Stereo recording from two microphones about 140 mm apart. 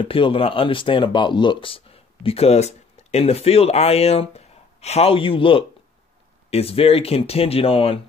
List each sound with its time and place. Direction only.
0.0 s speech: 40° left (ahead or behind)